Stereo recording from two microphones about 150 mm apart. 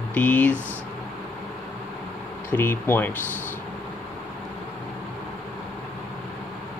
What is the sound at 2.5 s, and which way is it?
Speech, 15° left (ahead or behind).